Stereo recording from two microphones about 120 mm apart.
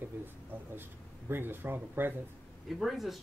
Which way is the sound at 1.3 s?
15° right (ahead or behind).